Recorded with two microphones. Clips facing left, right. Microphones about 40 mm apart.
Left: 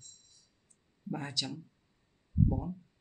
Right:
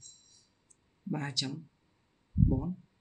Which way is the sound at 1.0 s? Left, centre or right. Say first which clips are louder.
Right 2 dB; centre.